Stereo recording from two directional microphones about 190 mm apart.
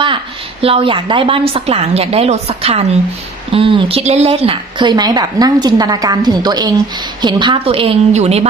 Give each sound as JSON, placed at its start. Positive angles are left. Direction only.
{"t": 0.0, "sound": "a woman's voice", "side_deg": -30}